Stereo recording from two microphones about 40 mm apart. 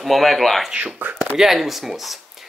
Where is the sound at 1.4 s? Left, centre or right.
Centre.